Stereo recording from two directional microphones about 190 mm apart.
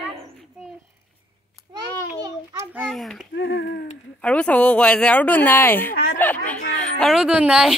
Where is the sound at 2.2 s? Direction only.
20° right (ahead or behind).